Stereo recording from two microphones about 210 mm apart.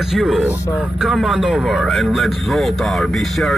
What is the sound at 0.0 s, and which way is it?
Speech, centre (ahead or behind).